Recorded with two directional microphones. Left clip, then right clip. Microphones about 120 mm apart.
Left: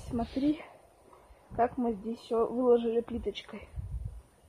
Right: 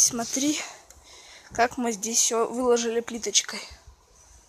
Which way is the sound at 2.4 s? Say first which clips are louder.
Right 4 dB; 45° right (ahead or behind).